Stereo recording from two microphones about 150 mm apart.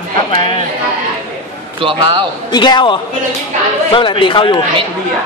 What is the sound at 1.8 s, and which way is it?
Speech, 35° right (ahead or behind).